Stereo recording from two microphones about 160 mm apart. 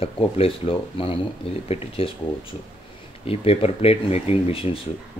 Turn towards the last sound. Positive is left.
turn(degrees=35)  # may be behind; listen again after turning